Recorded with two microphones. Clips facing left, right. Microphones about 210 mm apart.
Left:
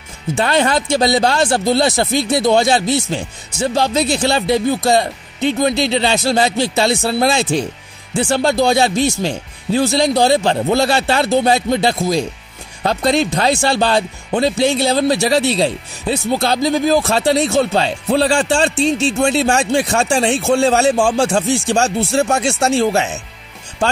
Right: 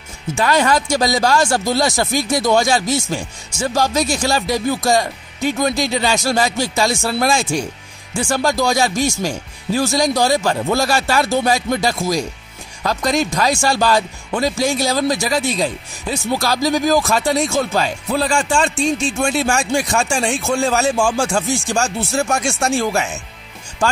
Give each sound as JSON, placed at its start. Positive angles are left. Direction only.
{"t": 0.4, "sound": "speech", "side_deg": 25}
{"t": 21.5, "sound": "speech", "side_deg": 65}
{"t": 21.9, "sound": "speech", "side_deg": 25}